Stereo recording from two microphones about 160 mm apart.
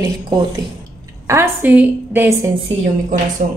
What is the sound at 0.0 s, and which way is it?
Speech, 25° right (ahead or behind).